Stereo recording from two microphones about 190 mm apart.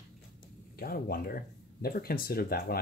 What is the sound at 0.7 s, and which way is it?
Speech, 50° left (ahead or behind).